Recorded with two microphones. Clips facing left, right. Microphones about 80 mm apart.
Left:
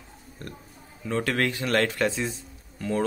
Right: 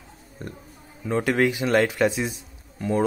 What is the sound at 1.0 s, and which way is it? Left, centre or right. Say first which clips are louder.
Speech: right 4 dB; centre.